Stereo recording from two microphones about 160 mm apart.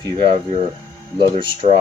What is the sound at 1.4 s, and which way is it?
Speech, 30° right (ahead or behind).